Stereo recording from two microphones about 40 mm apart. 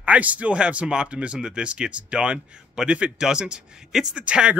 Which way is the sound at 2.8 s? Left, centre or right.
Centre.